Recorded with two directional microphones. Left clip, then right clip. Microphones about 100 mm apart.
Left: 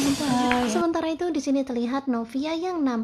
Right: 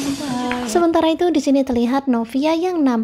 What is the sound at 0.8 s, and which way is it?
A woman's voice, 35° right (ahead or behind).